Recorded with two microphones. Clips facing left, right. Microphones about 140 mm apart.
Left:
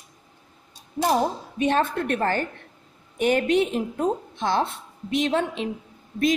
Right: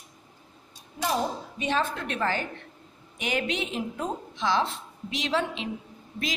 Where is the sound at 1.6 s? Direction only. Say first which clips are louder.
Left 6 dB; 55° left (ahead or behind).